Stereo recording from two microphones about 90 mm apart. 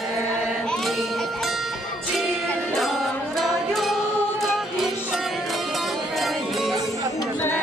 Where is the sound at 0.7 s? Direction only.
Centre (ahead or behind).